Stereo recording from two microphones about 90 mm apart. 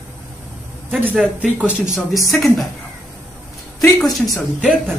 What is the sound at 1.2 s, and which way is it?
Speech, 10° right (ahead or behind).